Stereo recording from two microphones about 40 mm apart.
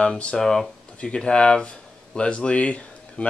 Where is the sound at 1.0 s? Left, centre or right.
Left.